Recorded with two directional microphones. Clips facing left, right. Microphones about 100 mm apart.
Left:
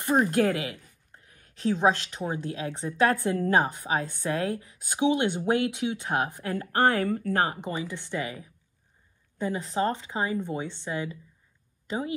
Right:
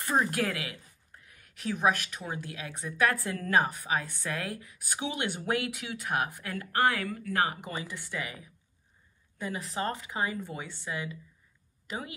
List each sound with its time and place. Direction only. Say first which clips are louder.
0.0 s a woman's voice: left 5 dB; 20° left (ahead or behind)
7.0 s speech: left 8 dB; 45° left (ahead or behind)
7.3 s a woman's voice: left 3 dB; 25° left (ahead or behind)